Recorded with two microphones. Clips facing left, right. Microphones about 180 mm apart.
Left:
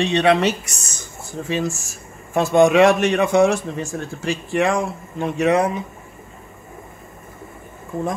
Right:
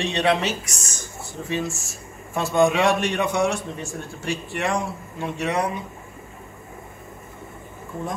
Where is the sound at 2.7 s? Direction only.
90° left.